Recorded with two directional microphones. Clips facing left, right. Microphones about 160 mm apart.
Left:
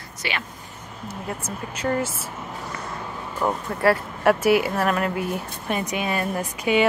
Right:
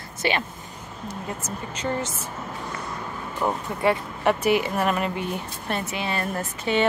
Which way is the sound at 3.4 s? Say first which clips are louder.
Left 2 dB; 5° left (ahead or behind).